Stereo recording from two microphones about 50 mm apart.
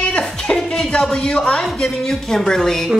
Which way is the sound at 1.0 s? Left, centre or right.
Centre.